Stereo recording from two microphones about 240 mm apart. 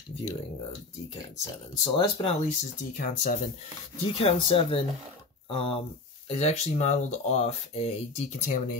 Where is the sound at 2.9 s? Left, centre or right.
Left.